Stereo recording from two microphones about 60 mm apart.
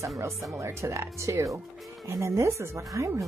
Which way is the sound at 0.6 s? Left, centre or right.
Right.